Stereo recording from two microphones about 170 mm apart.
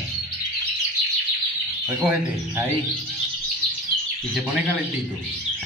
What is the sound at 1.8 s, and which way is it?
Speech, 15° right (ahead or behind).